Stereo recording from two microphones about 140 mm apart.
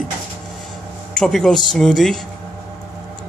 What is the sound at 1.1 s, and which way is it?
Speech, 5° left (ahead or behind).